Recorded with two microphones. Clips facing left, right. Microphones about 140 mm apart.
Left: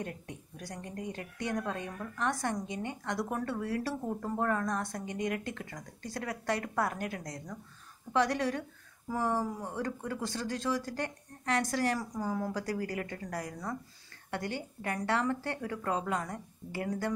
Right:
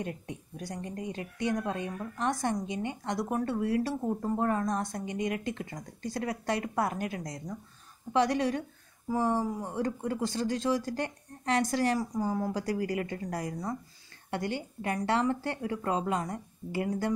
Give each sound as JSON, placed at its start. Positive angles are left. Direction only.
{"t": 0.0, "sound": "speech", "side_deg": -20}